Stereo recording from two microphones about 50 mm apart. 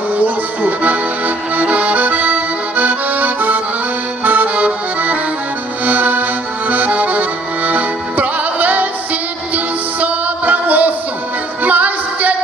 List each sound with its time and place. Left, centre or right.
0.1 s accordion: right
9.9 s music: right